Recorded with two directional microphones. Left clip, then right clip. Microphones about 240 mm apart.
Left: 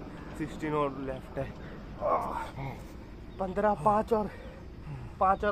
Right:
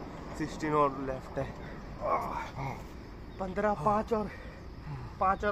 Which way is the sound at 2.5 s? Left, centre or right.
Centre.